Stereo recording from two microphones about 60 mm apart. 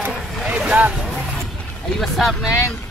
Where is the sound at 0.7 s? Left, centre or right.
Centre.